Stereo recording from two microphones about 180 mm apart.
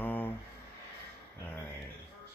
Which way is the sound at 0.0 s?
10° left (ahead or behind).